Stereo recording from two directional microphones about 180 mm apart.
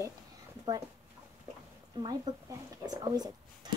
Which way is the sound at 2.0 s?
20° right (ahead or behind).